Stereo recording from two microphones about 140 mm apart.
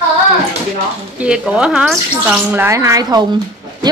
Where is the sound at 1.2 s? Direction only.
5° right (ahead or behind).